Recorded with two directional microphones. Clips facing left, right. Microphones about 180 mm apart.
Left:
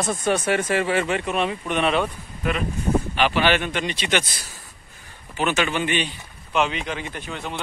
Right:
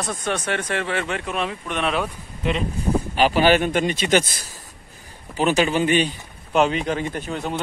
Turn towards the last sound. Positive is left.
turn(degrees=-40)  # may be behind; listen again after turning